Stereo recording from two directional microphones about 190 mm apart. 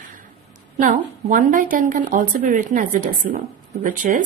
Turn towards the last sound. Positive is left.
turn(degrees=-45)  # may be behind; listen again after turning